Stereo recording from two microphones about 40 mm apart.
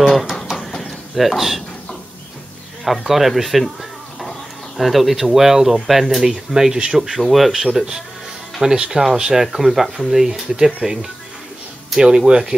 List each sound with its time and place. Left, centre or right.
0.0 s a sound: centre
3.1 s speech: centre
7.0 s speech: centre
8.6 s speech: right
11.9 s speech: centre
12.3 s speech: centre